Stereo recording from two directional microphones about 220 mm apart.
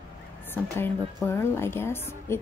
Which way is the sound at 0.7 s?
10° left (ahead or behind).